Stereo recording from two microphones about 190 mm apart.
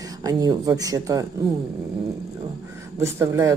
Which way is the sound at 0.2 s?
20° right (ahead or behind).